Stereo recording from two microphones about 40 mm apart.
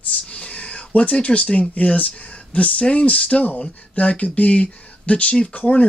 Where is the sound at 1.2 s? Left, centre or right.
Left.